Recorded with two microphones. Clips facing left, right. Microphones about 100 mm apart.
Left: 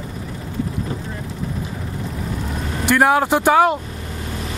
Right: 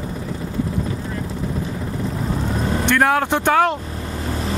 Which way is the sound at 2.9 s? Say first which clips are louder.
Left 3 dB; 5° left (ahead or behind).